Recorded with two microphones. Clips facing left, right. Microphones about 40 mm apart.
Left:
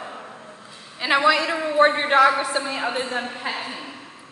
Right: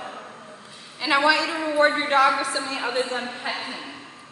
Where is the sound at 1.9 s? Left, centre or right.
Left.